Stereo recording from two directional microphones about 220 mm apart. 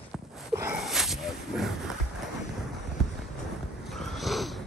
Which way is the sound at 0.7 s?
Centre (ahead or behind).